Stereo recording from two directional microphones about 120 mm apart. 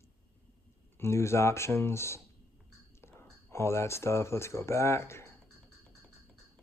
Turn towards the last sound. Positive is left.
turn(degrees=20)  # may be behind; listen again after turning